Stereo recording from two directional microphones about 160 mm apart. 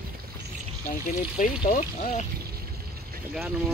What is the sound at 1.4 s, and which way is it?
Speech, 55° left (ahead or behind).